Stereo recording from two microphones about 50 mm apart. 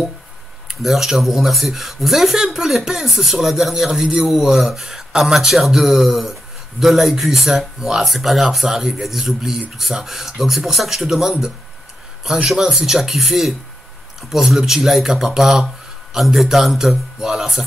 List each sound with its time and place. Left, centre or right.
0.7 s speech: centre
12.5 s speech: centre